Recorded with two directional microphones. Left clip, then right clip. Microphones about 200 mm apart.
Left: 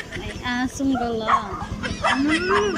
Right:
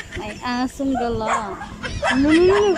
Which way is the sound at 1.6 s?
Centre (ahead or behind).